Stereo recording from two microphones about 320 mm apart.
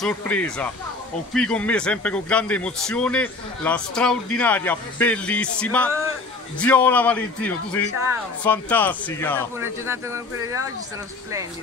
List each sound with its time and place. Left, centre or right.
0.0 s a man's voice: centre
9.6 s speech: centre